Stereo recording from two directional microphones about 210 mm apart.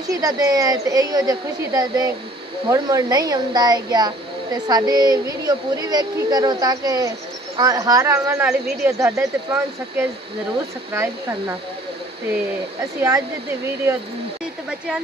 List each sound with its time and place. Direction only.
0.1 s speech: 15° right (ahead or behind)